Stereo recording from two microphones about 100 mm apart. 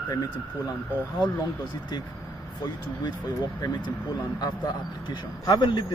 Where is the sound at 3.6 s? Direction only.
50° left (ahead or behind).